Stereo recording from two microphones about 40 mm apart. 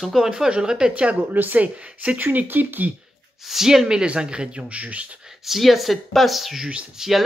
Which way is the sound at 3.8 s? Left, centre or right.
Right.